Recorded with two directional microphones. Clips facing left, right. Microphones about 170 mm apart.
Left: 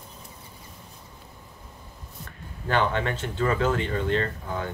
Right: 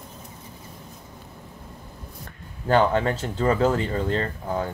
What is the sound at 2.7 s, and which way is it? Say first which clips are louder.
Speech: right 5 dB; 40° right (ahead or behind).